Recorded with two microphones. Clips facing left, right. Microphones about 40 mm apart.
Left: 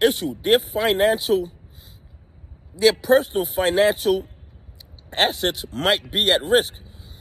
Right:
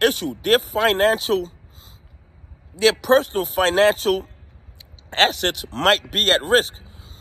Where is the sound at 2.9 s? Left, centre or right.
Right.